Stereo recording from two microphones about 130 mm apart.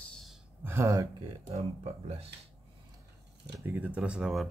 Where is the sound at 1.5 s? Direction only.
50° right (ahead or behind).